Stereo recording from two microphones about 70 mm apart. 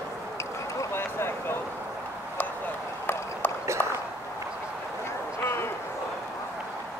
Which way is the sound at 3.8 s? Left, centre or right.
Left.